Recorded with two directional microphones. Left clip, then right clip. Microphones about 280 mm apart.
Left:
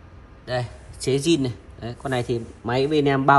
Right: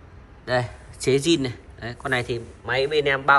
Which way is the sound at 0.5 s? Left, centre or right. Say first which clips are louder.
Right 4 dB; centre.